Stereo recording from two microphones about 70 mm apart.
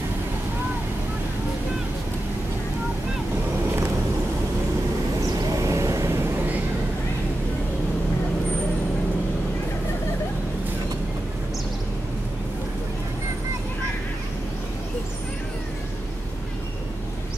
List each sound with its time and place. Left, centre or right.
5.2 s vehicle: right